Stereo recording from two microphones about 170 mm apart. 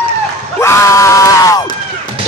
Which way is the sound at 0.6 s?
15° left (ahead or behind).